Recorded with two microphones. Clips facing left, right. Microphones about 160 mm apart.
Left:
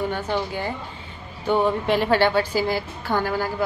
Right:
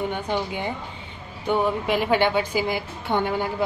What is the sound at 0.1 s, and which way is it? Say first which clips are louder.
A woman's voice: left 1 dB; 15° right (ahead or behind).